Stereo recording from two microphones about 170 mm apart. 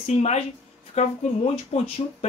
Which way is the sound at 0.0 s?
40° left (ahead or behind).